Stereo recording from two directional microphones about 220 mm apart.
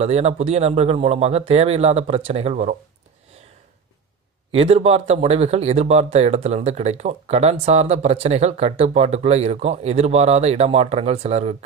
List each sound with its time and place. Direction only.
0.0 s speech: 30° right (ahead or behind)
4.6 s speech: 30° right (ahead or behind)